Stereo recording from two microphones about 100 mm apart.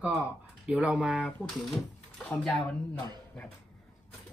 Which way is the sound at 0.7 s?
10° right (ahead or behind).